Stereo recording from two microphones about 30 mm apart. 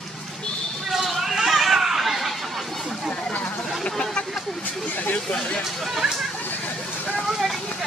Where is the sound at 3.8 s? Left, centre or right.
Left.